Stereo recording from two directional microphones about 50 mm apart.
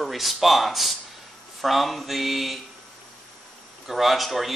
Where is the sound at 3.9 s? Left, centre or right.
Centre.